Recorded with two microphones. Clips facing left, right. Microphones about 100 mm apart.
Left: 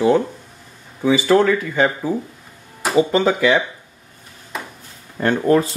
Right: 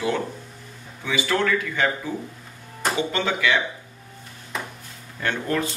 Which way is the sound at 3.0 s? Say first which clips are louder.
Left 11 dB; 35° left (ahead or behind).